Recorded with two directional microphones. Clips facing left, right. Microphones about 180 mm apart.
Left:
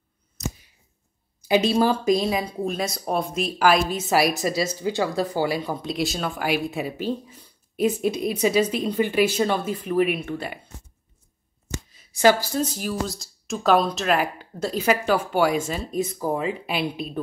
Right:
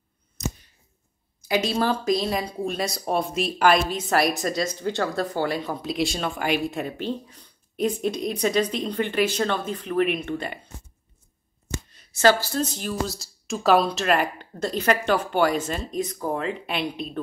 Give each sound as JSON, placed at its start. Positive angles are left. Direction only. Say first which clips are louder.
{"t": 1.5, "sound": "speech", "louder": "left 4 dB", "side_deg": 10}
{"t": 12.1, "sound": "speech", "louder": "left 1 dB", "side_deg": 15}